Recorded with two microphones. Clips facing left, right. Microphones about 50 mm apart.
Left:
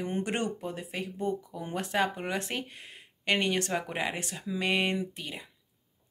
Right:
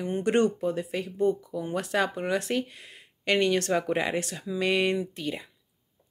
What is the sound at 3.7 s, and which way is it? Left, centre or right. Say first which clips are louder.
Speech: right 6 dB; centre.